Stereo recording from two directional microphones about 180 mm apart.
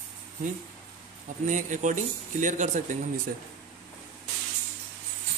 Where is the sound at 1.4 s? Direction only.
45° right (ahead or behind).